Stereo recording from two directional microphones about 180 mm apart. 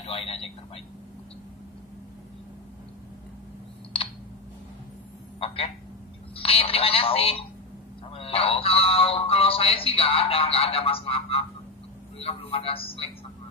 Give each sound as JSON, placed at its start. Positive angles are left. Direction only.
{"t": 0.0, "sound": "speech", "side_deg": 35}
{"t": 6.3, "sound": "speech", "side_deg": 30}